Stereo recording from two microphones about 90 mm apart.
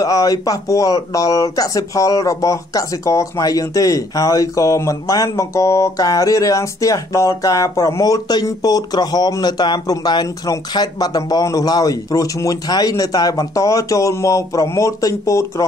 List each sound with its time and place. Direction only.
0.0 s speech: 40° left (ahead or behind)